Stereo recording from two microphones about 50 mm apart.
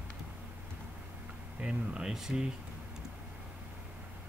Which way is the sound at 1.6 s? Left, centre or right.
Centre.